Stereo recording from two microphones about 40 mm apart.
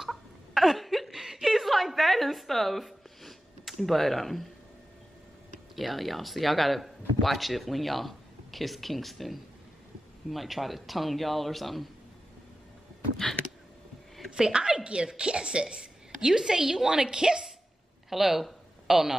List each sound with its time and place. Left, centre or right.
0.0 s a sound: centre
5.8 s speech: centre
14.3 s a woman's voice: centre
18.1 s speech: centre